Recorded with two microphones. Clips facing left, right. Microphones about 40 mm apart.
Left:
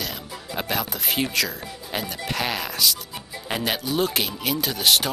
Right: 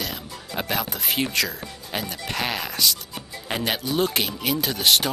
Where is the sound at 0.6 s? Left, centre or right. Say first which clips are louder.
Even; centre.